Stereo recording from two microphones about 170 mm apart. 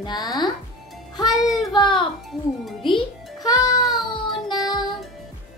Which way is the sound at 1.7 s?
30° left (ahead or behind).